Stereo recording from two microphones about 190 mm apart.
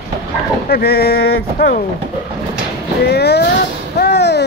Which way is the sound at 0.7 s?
55° left (ahead or behind).